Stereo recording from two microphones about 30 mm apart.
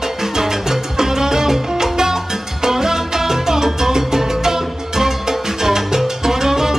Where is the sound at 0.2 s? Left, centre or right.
Centre.